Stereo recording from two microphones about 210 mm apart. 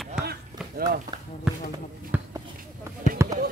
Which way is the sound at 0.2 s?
45° right (ahead or behind).